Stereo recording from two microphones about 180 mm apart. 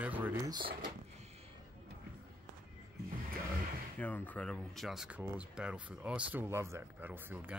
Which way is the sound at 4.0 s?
10° left (ahead or behind).